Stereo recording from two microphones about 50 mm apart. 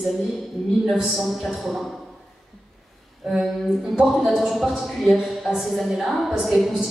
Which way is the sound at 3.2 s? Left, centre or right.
Centre.